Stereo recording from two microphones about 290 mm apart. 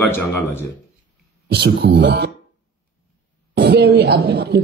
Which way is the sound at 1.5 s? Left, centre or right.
Right.